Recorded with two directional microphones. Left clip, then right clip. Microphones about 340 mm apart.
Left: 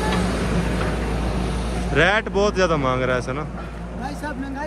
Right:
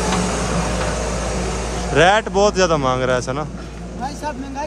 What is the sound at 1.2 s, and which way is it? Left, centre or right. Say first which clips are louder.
Vehicle: right 4 dB; centre.